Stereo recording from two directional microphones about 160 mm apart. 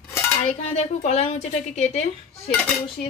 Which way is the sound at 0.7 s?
45° left (ahead or behind).